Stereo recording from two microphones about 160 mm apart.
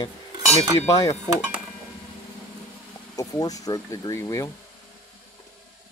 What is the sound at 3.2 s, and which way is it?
Speech, 20° left (ahead or behind).